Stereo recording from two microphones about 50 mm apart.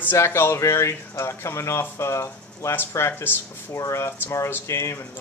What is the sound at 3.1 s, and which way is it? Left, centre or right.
Speech, left.